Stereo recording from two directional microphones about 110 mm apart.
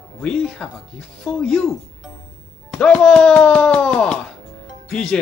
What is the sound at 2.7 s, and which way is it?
Speech, 5° left (ahead or behind).